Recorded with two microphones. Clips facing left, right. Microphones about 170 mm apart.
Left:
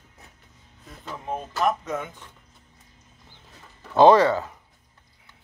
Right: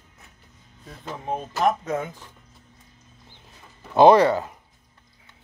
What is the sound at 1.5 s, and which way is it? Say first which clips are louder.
Speech: right 2 dB; 35° right (ahead or behind).